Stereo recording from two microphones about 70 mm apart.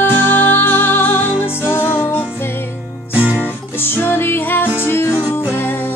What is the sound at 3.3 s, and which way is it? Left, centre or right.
Music, left.